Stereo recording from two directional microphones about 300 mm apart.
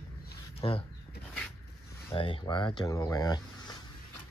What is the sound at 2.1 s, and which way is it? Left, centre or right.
Speech, centre.